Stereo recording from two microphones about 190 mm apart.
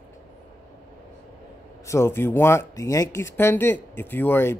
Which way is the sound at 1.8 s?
15° left (ahead or behind).